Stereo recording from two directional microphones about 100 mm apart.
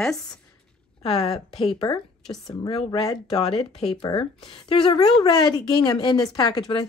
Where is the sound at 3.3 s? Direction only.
80° left.